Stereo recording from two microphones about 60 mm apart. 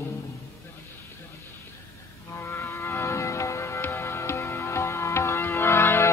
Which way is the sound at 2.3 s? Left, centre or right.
Left.